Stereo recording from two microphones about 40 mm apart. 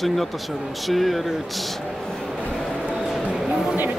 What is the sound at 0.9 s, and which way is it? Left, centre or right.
Speech, centre.